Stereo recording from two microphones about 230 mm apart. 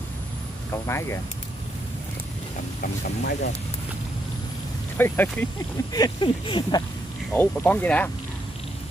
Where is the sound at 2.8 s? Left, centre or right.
Left.